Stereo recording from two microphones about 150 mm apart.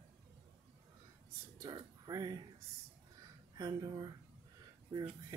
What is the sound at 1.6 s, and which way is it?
Speech, 25° right (ahead or behind).